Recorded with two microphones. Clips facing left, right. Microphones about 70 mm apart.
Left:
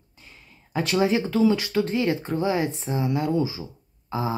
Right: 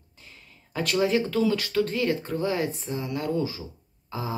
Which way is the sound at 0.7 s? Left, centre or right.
Centre.